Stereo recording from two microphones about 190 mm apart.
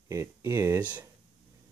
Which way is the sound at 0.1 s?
15° right (ahead or behind).